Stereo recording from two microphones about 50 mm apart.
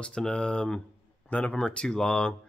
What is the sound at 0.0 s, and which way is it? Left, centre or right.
Speech, centre.